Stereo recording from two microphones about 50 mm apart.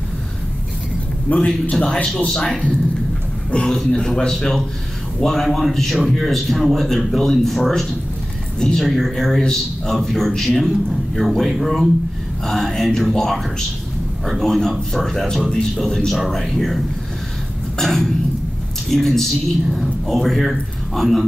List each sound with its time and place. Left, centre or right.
1.5 s a man's voice: centre
4.3 s a man's voice: centre
8.5 s a man's voice: centre
8.8 s a man's voice: centre
14.4 s a man's voice: centre
17.7 s cough: centre
18.9 s a man's voice: centre